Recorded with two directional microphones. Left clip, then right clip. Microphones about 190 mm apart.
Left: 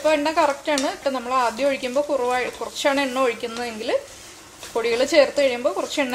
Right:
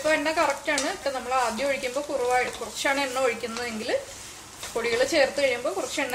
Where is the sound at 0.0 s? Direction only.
40° left (ahead or behind).